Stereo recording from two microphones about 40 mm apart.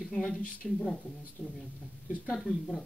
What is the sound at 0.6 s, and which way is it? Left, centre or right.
Speech, centre.